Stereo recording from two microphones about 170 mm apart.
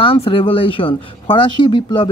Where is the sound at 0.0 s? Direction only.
30° left (ahead or behind).